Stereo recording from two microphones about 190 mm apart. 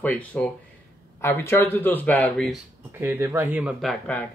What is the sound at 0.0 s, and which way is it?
Speech, 10° left (ahead or behind).